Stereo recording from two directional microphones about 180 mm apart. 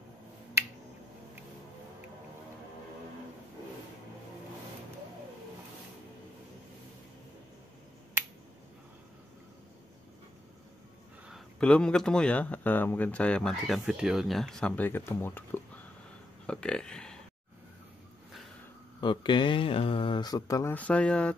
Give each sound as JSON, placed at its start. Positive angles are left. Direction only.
{"t": 11.2, "sound": "speech", "side_deg": 0}
{"t": 18.9, "sound": "speech", "side_deg": 25}